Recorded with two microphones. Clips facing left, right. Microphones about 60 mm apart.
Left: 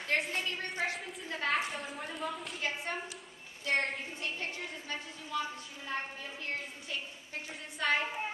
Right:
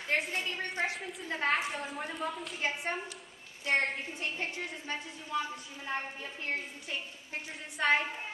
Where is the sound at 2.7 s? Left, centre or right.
Centre.